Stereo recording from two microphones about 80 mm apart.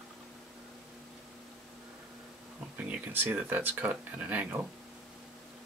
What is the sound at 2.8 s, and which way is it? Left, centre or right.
Speech, right.